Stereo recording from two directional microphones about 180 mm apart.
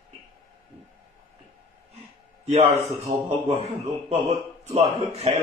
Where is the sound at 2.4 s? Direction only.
35° right (ahead or behind).